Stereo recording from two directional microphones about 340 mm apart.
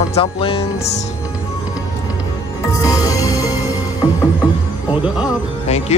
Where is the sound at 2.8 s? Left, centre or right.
Centre.